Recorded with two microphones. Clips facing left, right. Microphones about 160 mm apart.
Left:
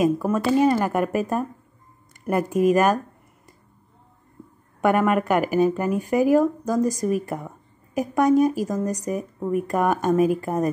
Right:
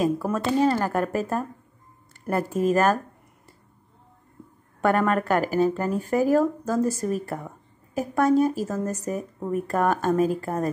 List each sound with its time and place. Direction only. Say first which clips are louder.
0.0 s speech: left 3 dB; 15° left (ahead or behind)
4.8 s speech: left 2 dB; 10° left (ahead or behind)